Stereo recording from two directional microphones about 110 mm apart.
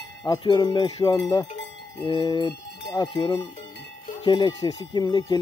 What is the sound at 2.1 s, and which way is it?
Cowbell, 45° left (ahead or behind).